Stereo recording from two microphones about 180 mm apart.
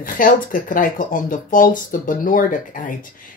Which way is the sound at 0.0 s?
50° left (ahead or behind).